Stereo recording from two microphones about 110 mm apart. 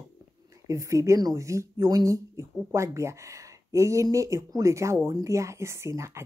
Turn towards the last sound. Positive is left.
turn(degrees=-25)  # may be behind; listen again after turning